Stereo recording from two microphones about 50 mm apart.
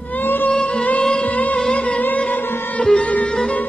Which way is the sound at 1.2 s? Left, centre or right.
Left.